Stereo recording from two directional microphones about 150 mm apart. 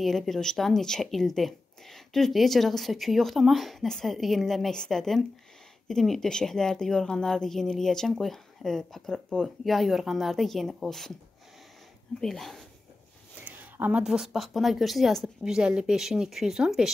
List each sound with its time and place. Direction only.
0.0 s a woman's voice: centre (ahead or behind)
12.2 s a woman's voice: centre (ahead or behind)
13.4 s a woman's voice: 10° right (ahead or behind)